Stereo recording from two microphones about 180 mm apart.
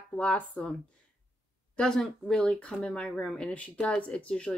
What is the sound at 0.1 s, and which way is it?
Speech, 10° left (ahead or behind).